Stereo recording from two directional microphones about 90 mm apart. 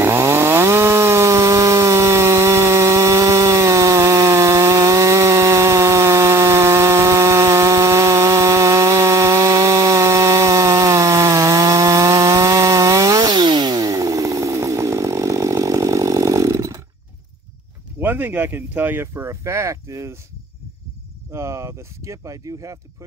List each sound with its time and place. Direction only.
0.0 s chainsaw: 30° right (ahead or behind)
18.0 s speech: 20° right (ahead or behind)
21.3 s speech: 30° right (ahead or behind)